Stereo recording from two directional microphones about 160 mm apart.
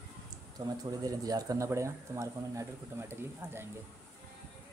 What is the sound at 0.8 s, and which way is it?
Speech, 20° right (ahead or behind).